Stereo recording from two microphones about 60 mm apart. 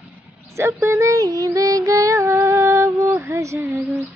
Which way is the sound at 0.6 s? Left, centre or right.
Right.